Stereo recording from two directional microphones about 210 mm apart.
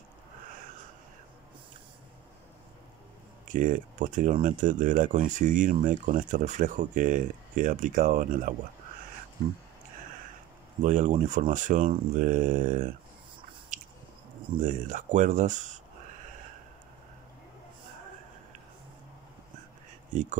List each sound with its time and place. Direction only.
3.4 s speech: 40° right (ahead or behind)
10.8 s speech: 35° right (ahead or behind)
13.7 s biting: 35° right (ahead or behind)
14.6 s speech: 40° right (ahead or behind)